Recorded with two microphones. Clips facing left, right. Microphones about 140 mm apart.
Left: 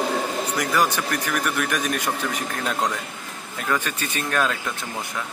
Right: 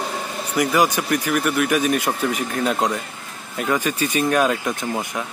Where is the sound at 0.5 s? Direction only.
10° right (ahead or behind).